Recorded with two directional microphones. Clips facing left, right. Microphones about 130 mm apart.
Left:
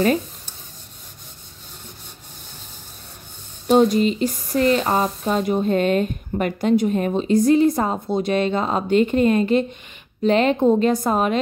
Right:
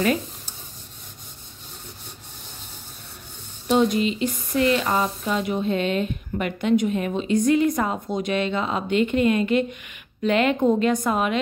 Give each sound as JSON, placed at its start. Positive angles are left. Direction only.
{"t": 3.6, "sound": "speech", "side_deg": 40}